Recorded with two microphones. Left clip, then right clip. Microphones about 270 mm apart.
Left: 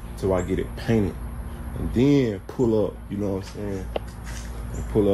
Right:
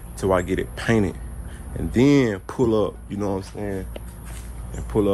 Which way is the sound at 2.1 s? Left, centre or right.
Centre.